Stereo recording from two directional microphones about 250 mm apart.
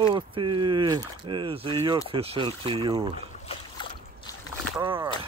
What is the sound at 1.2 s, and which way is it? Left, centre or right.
Speech, centre.